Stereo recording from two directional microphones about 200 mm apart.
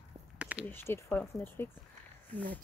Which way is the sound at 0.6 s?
10° left (ahead or behind).